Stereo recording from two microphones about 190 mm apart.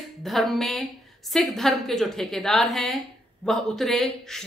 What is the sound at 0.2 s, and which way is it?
Speech, centre (ahead or behind).